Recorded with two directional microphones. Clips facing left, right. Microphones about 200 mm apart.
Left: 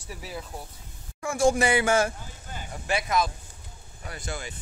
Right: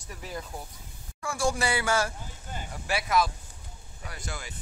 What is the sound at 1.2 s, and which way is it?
Speech, 20° left (ahead or behind).